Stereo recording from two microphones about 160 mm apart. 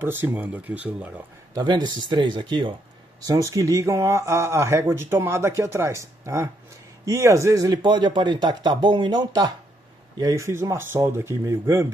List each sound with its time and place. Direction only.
0.0 s speech: 15° right (ahead or behind)
1.5 s speech: 25° right (ahead or behind)